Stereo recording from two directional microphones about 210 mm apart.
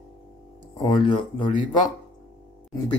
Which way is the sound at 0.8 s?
20° left (ahead or behind).